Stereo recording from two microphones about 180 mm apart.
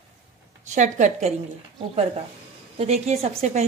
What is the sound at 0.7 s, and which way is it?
Speech, 40° right (ahead or behind).